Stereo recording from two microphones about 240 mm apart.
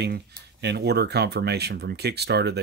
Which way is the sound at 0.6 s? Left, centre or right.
Right.